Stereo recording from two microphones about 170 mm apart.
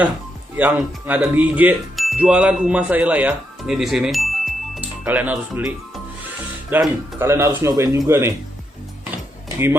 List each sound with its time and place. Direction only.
0.6 s speech: 10° right (ahead or behind)
6.7 s speech: 10° right (ahead or behind)